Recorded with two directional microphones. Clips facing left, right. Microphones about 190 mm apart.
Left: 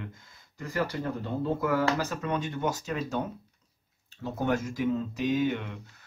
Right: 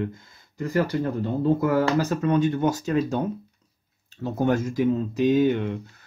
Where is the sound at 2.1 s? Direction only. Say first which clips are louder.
Right 10 dB; 40° right (ahead or behind).